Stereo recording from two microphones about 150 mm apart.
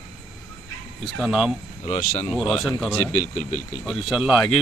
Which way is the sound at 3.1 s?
55° left (ahead or behind).